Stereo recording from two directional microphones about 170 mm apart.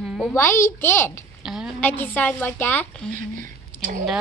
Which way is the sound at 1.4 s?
Centre (ahead or behind).